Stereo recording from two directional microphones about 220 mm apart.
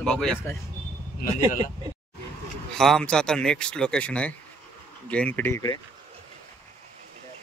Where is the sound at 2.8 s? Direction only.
Centre (ahead or behind).